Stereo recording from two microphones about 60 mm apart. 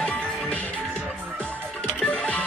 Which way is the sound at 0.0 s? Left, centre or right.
Left.